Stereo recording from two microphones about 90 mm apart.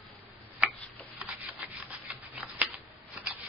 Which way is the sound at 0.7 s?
20° left (ahead or behind).